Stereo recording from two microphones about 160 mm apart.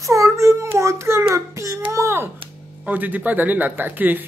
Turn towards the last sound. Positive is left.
turn(degrees=-10)  # may be behind; listen again after turning